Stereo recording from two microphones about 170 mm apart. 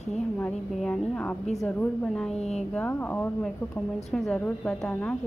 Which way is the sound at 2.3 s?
40° left (ahead or behind).